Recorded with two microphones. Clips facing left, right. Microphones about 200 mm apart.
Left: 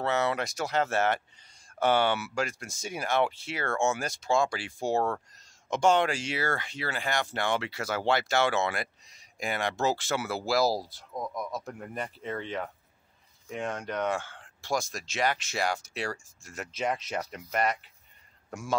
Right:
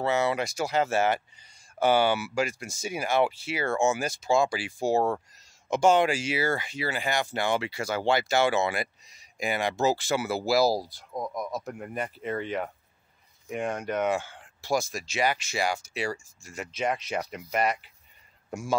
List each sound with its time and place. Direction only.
0.0 s speech: centre (ahead or behind)
11.1 s speech: 20° right (ahead or behind)
11.5 s a man's voice: 5° right (ahead or behind)